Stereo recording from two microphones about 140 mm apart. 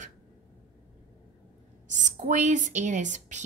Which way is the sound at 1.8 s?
60° right (ahead or behind).